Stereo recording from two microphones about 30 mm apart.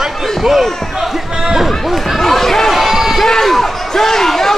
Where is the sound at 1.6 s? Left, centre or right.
Centre.